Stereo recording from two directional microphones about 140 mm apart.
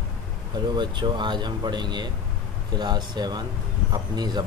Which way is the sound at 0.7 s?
35° right (ahead or behind).